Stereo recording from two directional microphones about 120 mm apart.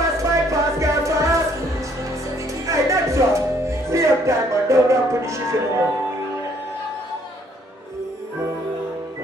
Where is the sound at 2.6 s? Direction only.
25° right (ahead or behind).